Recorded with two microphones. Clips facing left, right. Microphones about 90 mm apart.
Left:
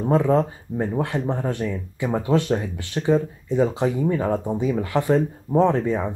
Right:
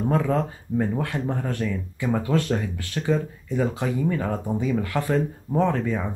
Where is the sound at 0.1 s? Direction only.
20° left (ahead or behind).